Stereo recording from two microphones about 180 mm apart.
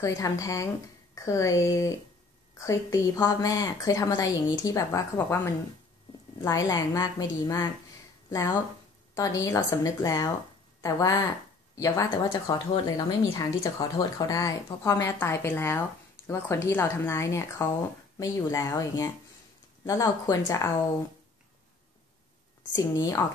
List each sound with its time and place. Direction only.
0.0 s a woman's voice: 20° left (ahead or behind)
9.1 s a woman's voice: 20° left (ahead or behind)
22.8 s a woman's voice: 20° left (ahead or behind)